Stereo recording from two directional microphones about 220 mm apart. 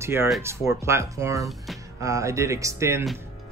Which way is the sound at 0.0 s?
10° right (ahead or behind).